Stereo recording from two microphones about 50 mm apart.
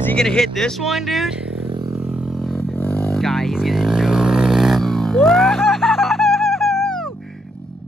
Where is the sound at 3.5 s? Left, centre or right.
Centre.